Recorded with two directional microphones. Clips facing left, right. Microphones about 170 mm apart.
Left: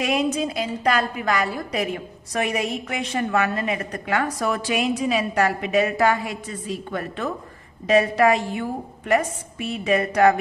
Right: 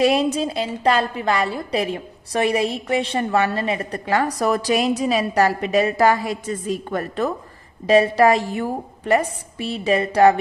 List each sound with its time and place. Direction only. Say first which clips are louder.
0.0 s a woman's voice: right 4 dB; 30° right (ahead or behind)